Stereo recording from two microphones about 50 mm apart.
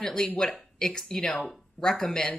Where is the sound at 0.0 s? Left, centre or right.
Centre.